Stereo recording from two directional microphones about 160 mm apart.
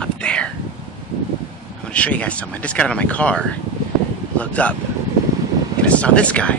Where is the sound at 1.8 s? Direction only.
10° left (ahead or behind).